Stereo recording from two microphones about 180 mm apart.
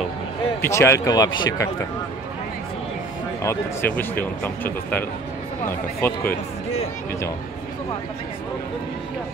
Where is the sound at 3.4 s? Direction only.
10° left (ahead or behind).